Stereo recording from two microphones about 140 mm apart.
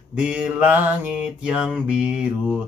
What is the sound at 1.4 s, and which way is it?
Mantra, 5° right (ahead or behind).